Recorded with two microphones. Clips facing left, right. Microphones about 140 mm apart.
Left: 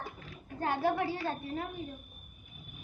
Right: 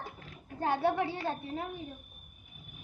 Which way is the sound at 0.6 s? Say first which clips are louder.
Right 1 dB; 25° right (ahead or behind).